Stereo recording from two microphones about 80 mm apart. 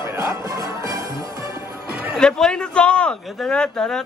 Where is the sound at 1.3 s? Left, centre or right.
Right.